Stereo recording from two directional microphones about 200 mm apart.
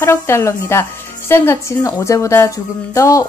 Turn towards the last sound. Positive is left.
turn(degrees=15)  # may be behind; listen again after turning